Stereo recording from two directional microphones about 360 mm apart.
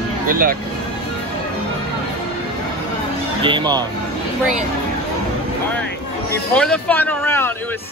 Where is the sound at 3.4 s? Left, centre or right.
Centre.